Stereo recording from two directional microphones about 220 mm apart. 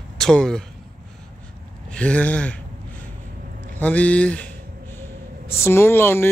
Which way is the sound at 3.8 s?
5° left (ahead or behind).